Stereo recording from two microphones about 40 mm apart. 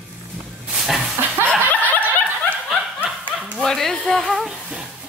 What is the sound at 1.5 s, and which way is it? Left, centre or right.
Snicker, left.